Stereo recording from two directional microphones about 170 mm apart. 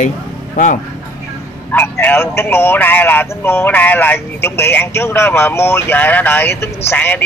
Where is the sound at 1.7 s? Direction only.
10° left (ahead or behind).